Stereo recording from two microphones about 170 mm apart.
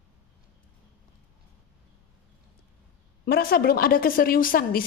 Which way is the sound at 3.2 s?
60° left (ahead or behind).